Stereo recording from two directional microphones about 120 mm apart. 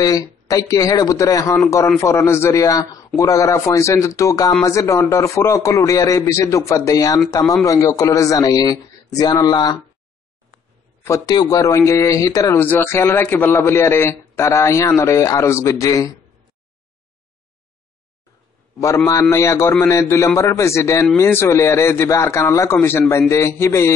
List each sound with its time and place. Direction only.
0.0 s a man's voice: 30° left (ahead or behind)
11.1 s a man's voice: 25° left (ahead or behind)
12.5 s a man's voice: 15° left (ahead or behind)
19.0 s a man's voice: 25° left (ahead or behind)